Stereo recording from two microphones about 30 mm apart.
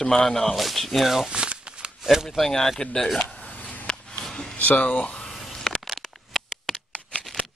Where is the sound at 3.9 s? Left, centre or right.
Left.